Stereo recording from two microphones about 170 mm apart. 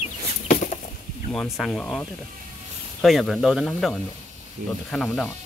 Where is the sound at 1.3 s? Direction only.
Centre (ahead or behind).